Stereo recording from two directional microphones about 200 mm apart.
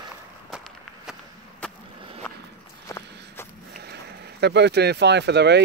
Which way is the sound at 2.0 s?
25° right (ahead or behind).